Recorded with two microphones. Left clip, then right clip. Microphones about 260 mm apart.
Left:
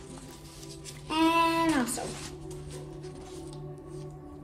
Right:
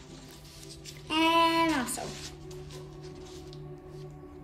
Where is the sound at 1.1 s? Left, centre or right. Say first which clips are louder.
Right 1 dB; right.